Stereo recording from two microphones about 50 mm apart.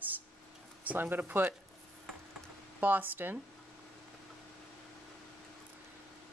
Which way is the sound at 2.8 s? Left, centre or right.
Right.